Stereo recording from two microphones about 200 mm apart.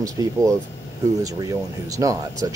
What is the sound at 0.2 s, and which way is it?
Speech, 20° right (ahead or behind).